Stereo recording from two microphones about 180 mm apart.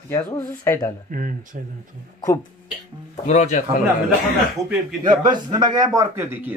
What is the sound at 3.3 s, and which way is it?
Speech, 40° left (ahead or behind).